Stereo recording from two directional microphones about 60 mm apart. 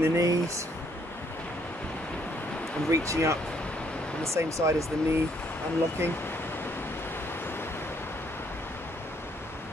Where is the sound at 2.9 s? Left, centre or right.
Right.